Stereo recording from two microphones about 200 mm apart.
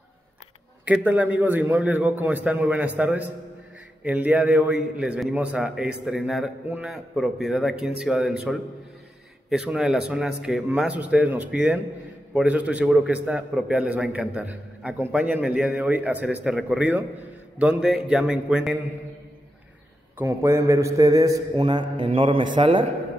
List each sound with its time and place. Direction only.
0.8 s a man's voice: 5° right (ahead or behind)
20.2 s a man's voice: 15° right (ahead or behind)